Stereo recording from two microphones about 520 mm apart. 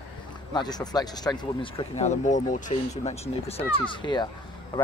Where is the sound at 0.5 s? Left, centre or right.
Centre.